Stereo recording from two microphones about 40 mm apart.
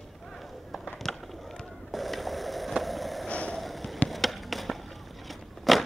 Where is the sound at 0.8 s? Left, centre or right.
Centre.